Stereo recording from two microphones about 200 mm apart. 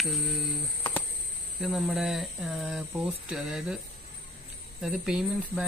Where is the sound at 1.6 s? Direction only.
Centre (ahead or behind).